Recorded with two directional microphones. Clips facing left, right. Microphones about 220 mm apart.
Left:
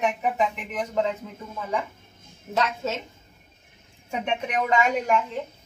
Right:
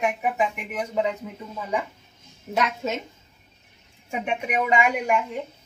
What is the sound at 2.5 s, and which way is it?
Speech, 15° right (ahead or behind).